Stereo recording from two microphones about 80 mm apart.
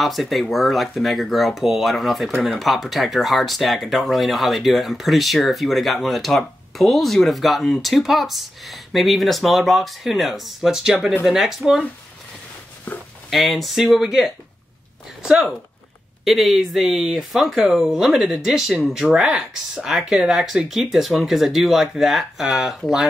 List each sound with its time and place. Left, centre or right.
0.0 s speech: centre
12.9 s a sound: centre
13.3 s speech: centre